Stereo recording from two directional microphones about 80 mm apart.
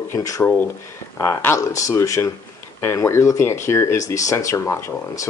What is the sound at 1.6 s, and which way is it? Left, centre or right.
Speech, left.